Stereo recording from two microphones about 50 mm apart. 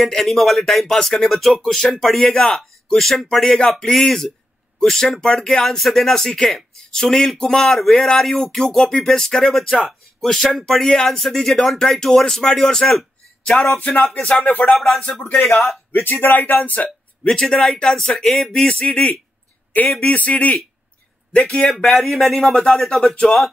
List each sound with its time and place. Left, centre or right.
0.0 s speech: centre
1.9 s speech: centre; by 15.2 s left
15.9 s speech: left
17.3 s speech: centre
18.8 s a man's voice: left
21.6 s speech: centre